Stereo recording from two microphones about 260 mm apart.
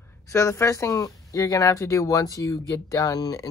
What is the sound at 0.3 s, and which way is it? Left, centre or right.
Speech, centre.